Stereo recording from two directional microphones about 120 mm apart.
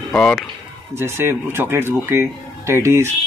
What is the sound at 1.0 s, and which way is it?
Speech, 20° right (ahead or behind).